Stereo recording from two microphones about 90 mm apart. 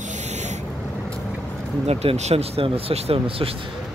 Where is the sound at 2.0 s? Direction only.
90° right.